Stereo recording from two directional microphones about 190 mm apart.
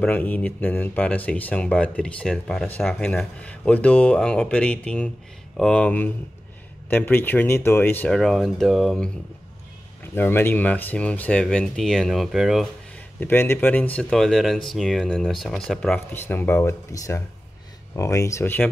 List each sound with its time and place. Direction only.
0.0 s speech: 10° left (ahead or behind)
10.1 s speech: 10° left (ahead or behind)
13.2 s speech: 10° left (ahead or behind)